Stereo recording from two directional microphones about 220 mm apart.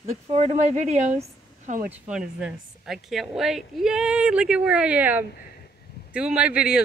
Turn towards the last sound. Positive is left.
turn(degrees=-5)  # may be behind; listen again after turning